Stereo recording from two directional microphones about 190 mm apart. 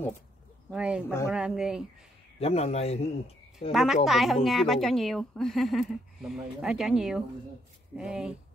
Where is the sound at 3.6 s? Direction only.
Centre (ahead or behind).